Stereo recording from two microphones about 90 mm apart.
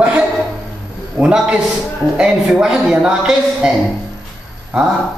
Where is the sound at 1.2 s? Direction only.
15° right (ahead or behind).